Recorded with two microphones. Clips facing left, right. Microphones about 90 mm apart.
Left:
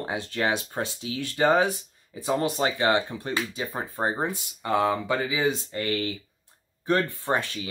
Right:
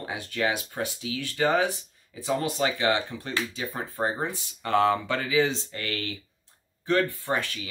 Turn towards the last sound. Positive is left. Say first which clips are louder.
# even
turn(degrees=20)  # may be behind; listen again after turning